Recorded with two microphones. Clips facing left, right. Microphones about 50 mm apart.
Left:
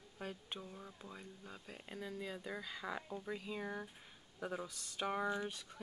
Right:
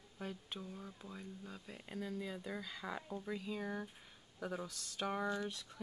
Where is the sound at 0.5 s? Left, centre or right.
Centre.